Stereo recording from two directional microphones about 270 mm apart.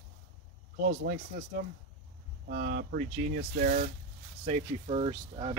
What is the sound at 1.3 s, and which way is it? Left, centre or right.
Speech, right.